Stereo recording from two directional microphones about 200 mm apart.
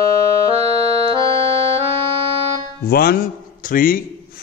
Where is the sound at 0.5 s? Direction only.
30° right (ahead or behind).